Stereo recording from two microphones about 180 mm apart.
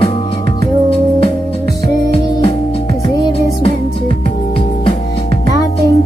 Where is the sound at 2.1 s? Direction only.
30° left (ahead or behind).